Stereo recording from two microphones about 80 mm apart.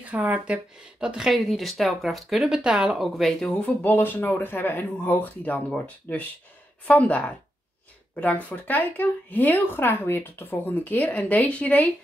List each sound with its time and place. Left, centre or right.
0.0 s speech: centre
3.0 s speech: centre
3.8 s speech: left